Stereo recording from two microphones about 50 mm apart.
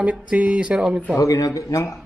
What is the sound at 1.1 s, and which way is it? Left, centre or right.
Speech, left.